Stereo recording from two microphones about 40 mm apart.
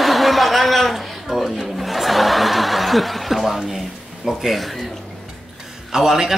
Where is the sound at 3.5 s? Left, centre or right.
Centre.